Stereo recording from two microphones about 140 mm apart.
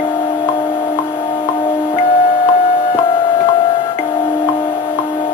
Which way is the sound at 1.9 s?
40° left (ahead or behind).